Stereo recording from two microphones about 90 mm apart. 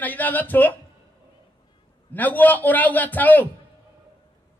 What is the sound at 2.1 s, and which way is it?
Speech, 20° left (ahead or behind).